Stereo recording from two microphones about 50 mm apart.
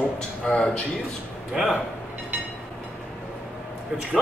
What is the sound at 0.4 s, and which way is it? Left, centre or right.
Speech, left.